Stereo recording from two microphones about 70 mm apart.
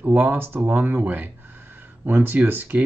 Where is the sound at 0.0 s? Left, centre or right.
Right.